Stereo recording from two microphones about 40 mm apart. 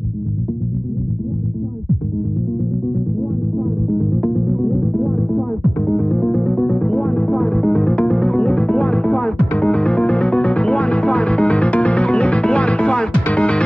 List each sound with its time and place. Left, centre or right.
4.2 s music: centre
7.5 s music: centre